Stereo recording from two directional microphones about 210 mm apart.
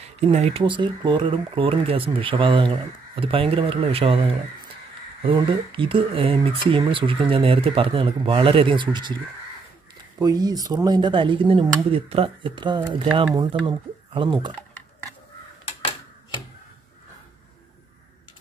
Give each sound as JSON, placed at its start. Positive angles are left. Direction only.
{"t": 0.3, "sound": "speech", "side_deg": -30}
{"t": 10.2, "sound": "speech", "side_deg": -20}